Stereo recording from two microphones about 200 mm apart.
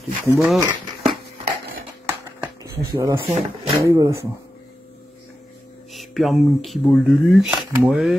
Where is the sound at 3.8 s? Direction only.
15° right (ahead or behind).